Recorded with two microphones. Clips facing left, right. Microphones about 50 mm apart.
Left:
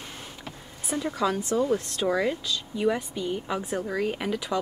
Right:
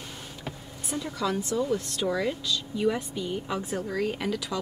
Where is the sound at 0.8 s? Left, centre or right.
Left.